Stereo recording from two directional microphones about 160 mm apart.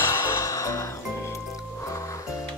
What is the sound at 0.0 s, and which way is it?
Music, 15° left (ahead or behind).